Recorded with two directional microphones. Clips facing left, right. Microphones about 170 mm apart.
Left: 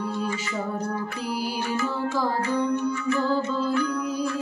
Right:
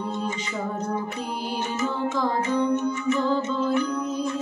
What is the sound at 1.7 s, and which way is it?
Music, 20° right (ahead or behind).